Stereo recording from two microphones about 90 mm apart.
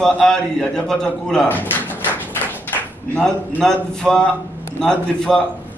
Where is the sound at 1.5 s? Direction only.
20° left (ahead or behind).